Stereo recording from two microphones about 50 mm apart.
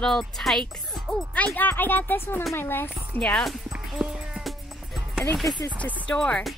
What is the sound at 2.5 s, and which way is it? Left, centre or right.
Speech, left.